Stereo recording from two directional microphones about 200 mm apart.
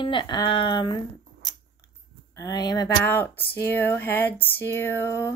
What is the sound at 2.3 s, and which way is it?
Speech, 20° left (ahead or behind).